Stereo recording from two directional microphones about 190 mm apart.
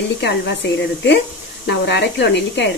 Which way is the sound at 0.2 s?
65° left (ahead or behind).